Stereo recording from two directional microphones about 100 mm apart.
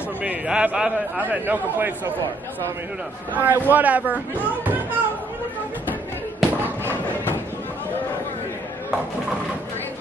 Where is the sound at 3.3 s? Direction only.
20° right (ahead or behind).